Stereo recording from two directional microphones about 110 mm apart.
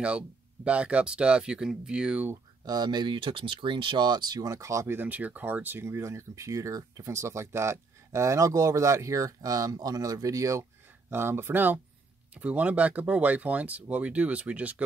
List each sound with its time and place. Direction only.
0.7 s speech: 10° right (ahead or behind)
2.6 s speech: 40° right (ahead or behind); by 14.8 s 15° right (ahead or behind)